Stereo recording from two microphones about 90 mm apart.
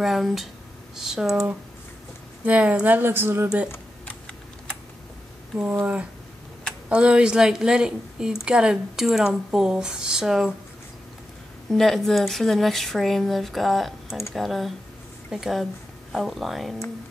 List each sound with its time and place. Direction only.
0.0 s a woman's voice: centre (ahead or behind); by 3.4 s 25° right (ahead or behind)
3.4 s speech: 10° right (ahead or behind)
5.6 s speech: 20° right (ahead or behind)
11.7 s speech: 5° left (ahead or behind)